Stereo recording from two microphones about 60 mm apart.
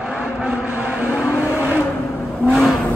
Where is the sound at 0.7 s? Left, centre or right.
Right.